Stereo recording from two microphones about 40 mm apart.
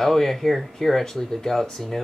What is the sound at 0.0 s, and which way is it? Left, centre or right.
Speech, centre.